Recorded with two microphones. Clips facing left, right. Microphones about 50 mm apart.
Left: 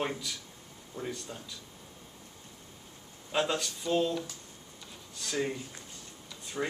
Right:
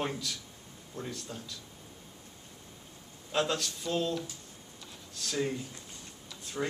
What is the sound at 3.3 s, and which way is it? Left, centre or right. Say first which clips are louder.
Speech: even; centre.